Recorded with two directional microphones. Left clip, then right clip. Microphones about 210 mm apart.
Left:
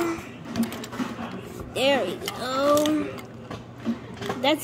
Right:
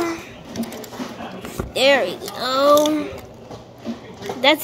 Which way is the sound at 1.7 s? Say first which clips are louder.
Right 7 dB; 5° left (ahead or behind).